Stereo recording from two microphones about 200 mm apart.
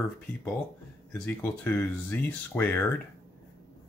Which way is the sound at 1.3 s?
5° left (ahead or behind).